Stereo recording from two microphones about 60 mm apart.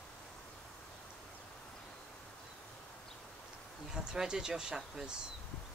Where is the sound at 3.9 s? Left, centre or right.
Centre.